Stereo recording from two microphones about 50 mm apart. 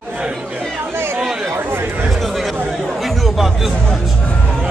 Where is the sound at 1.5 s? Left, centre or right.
Right.